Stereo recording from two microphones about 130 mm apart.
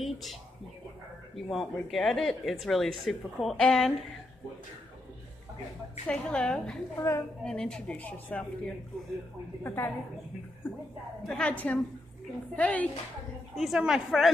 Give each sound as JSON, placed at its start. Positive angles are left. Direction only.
{"t": 0.0, "sound": "speech", "side_deg": 0}
{"t": 6.0, "sound": "speech", "side_deg": 5}
{"t": 7.0, "sound": "a woman's voice", "side_deg": 25}
{"t": 7.4, "sound": "speech", "side_deg": 5}
{"t": 11.2, "sound": "speech", "side_deg": 10}
{"t": 13.6, "sound": "speech", "side_deg": 0}